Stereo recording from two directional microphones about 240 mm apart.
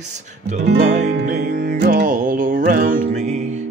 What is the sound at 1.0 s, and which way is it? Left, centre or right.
Music, right.